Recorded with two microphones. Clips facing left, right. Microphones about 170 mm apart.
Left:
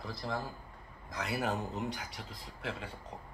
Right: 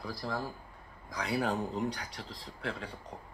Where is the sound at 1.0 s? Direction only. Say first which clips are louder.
Right 3 dB; centre (ahead or behind).